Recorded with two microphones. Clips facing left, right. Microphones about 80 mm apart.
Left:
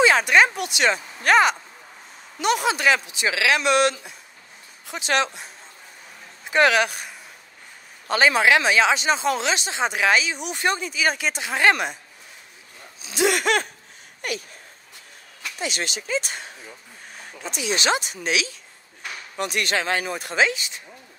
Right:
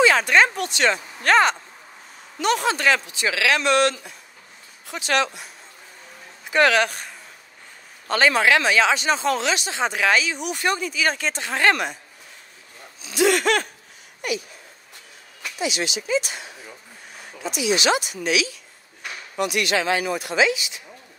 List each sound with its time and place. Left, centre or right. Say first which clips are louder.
0.0 s speech: even; centre
6.5 s speech: even; centre
13.0 s speech: right 2 dB; left
15.6 s speech: right 3 dB; left
17.7 s speech: right 2 dB; left